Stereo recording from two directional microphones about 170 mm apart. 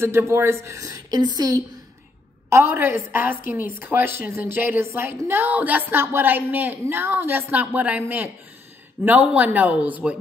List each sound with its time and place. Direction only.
0.0 s a woman's voice: 15° right (ahead or behind)